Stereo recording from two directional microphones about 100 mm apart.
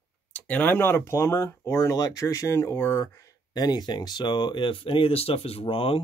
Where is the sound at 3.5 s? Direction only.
45° left (ahead or behind).